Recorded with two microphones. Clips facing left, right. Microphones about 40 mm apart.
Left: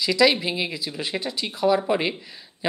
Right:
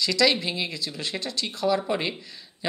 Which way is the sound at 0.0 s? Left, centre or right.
Centre.